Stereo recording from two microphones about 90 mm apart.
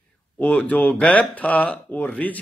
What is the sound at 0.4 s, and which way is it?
A man's voice, 20° left (ahead or behind).